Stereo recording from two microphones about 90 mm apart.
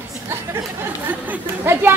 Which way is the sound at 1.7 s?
25° right (ahead or behind).